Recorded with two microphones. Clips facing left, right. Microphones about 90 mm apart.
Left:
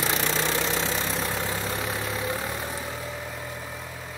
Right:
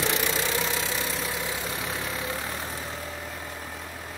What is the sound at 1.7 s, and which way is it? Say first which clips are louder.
Vehicle: left 2 dB; 20° left (ahead or behind).